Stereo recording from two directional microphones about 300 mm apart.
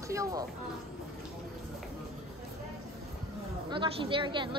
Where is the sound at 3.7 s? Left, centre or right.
Centre.